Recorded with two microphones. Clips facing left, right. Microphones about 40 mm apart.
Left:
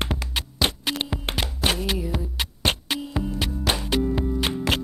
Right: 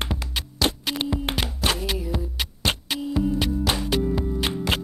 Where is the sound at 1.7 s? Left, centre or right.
Centre.